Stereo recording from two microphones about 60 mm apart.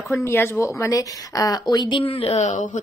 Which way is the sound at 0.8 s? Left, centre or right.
Left.